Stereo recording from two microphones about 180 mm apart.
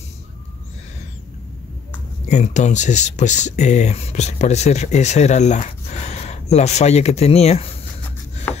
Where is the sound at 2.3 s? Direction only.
40° left (ahead or behind).